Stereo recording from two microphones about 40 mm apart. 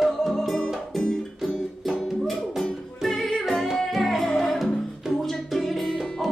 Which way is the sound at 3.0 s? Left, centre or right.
Centre.